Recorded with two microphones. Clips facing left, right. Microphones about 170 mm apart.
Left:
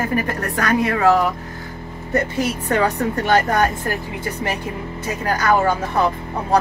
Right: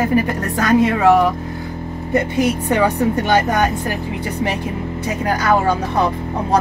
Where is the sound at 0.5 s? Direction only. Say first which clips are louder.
Right 5 dB; 20° right (ahead or behind).